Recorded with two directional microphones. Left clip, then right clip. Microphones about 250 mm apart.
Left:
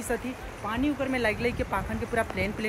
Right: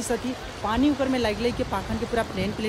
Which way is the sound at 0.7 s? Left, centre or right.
Centre.